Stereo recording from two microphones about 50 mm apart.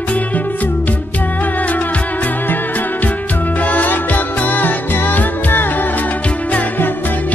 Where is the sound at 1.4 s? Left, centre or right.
Left.